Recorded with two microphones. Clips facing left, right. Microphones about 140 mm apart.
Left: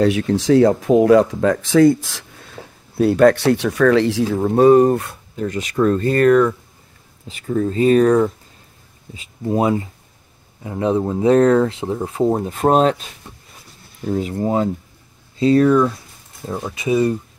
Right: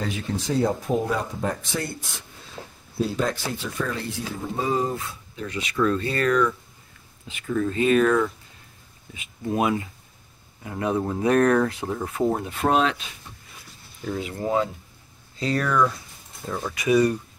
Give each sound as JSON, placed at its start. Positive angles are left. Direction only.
{"t": 0.0, "sound": "speech", "side_deg": 75}
{"t": 3.0, "sound": "speech", "side_deg": 65}
{"t": 5.3, "sound": "speech", "side_deg": 45}
{"t": 7.2, "sound": "speech", "side_deg": 35}
{"t": 14.0, "sound": "speech", "side_deg": 35}